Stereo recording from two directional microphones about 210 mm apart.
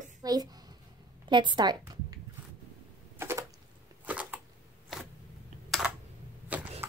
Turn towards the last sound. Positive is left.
turn(degrees=-10)  # may be behind; listen again after turning